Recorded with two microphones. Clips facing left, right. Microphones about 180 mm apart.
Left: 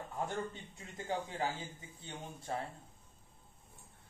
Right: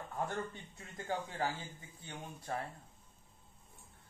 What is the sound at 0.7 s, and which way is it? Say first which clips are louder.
Speech: even; 15° left (ahead or behind).